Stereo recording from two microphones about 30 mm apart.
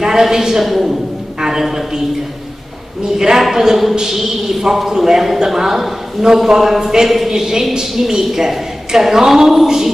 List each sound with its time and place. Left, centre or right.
0.0 s a woman's voice: centre
3.2 s a woman's voice: centre
6.8 s a woman's voice: centre